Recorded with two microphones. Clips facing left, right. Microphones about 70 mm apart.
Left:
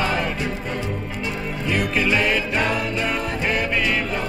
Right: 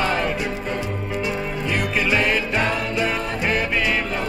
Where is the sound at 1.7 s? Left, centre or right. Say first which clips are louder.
Left 1 dB; centre.